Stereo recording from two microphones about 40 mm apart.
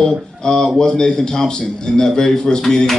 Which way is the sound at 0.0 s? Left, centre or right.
Centre.